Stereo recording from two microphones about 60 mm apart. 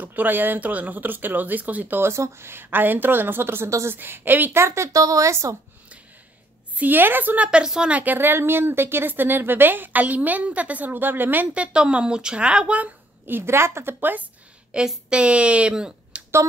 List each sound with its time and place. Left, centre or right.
0.0 s speech: right
2.0 s speech: right
4.6 s a woman's voice: right
6.8 s speech: right
7.4 s a woman's voice: centre
7.9 s speech: right
11.5 s a woman's voice: centre
13.4 s a woman's voice: right
13.9 s speech: right
14.7 s a woman's voice: centre